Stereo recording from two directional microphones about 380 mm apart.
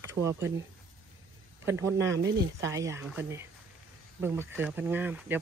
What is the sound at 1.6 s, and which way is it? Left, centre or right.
Speech, centre.